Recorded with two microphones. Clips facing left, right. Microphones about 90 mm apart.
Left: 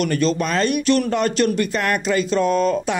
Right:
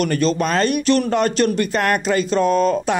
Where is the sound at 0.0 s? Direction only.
40° right (ahead or behind).